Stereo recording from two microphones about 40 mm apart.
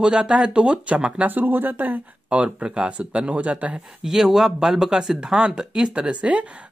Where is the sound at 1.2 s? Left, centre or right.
Right.